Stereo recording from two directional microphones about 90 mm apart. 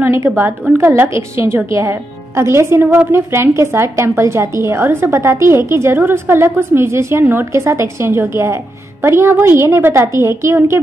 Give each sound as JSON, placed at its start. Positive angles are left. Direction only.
{"t": 0.0, "sound": "a woman's voice", "side_deg": -30}